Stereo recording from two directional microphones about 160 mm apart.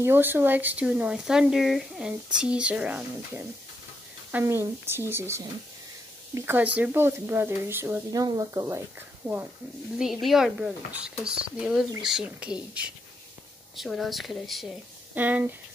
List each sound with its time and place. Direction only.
0.0 s speech: 15° right (ahead or behind)
9.9 s speech: centre (ahead or behind)
15.1 s speech: 10° right (ahead or behind)